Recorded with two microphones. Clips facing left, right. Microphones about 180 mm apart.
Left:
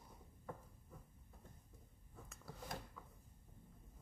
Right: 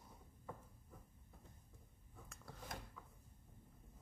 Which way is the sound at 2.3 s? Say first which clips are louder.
Left 2 dB; centre (ahead or behind).